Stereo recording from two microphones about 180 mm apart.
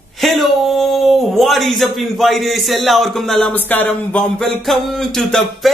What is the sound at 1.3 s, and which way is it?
A man's voice, centre (ahead or behind).